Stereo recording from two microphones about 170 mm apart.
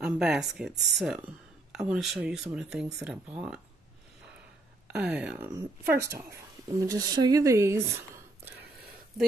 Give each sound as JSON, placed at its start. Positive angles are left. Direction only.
{"t": 0.0, "sound": "speech", "side_deg": -5}
{"t": 4.9, "sound": "speech", "side_deg": -5}